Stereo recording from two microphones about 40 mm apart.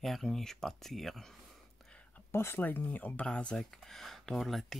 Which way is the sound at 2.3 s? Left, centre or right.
Left.